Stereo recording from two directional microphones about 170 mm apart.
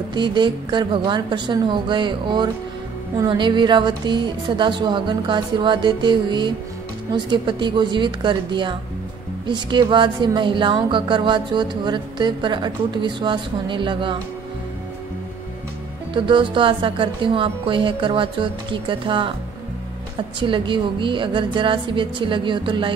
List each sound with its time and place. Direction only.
0.1 s a woman's voice: 25° right (ahead or behind)
16.1 s a woman's voice: 30° right (ahead or behind)
20.3 s a woman's voice: 30° right (ahead or behind)